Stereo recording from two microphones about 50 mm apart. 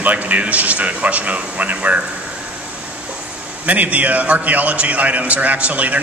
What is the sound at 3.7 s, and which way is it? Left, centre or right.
A man's voice, right.